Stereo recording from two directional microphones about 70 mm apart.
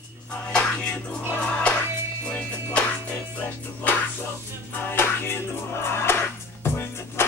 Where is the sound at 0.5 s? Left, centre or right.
Centre.